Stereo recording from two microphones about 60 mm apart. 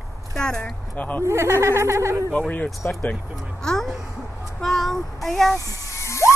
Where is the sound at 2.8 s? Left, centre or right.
Left.